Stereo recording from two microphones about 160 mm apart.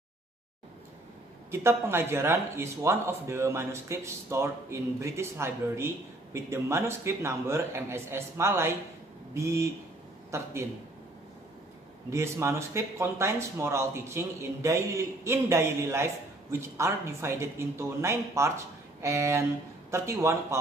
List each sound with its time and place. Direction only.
1.5 s speech: 15° right (ahead or behind)
12.1 s speech: 15° right (ahead or behind)